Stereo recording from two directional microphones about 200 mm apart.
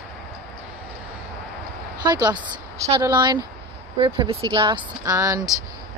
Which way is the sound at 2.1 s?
20° right (ahead or behind).